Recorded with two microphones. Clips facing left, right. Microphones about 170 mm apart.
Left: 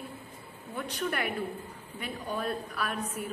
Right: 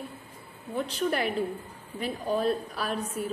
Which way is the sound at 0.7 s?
30° right (ahead or behind).